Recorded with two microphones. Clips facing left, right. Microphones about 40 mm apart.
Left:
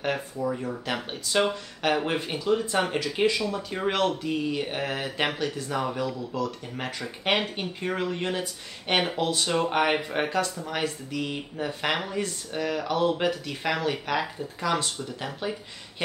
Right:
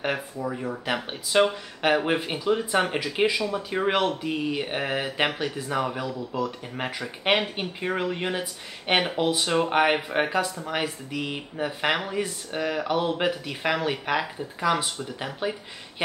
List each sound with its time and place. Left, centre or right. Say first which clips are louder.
0.0 s speech: even; centre